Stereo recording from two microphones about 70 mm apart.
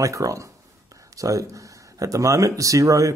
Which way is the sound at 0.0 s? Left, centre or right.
Right.